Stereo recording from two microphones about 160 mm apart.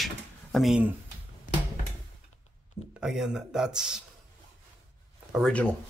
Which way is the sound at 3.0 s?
5° right (ahead or behind).